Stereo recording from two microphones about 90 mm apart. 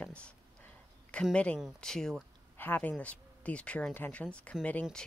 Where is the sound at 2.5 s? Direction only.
20° left (ahead or behind).